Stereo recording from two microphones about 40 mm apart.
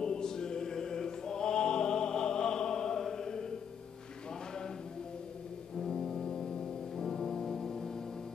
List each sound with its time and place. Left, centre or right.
0.0 s choir: centre
5.8 s music: centre